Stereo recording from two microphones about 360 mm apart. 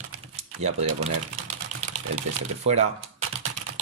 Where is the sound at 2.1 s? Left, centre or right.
Centre.